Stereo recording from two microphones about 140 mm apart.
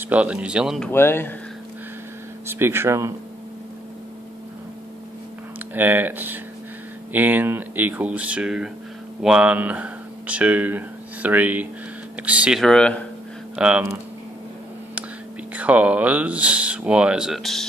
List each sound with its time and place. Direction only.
0.0 s speech: 10° right (ahead or behind)
0.8 s speech: 15° left (ahead or behind)
2.4 s speech: 15° right (ahead or behind)
5.8 s speech: 15° right (ahead or behind); by 12.9 s 5° left (ahead or behind)
13.6 s speech: 10° right (ahead or behind)
15.5 s speech: 10° right (ahead or behind)